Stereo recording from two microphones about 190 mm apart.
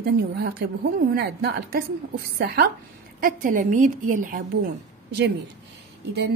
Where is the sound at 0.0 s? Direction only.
55° right (ahead or behind).